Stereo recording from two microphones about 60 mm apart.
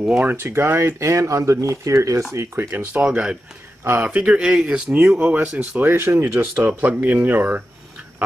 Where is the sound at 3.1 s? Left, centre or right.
Centre.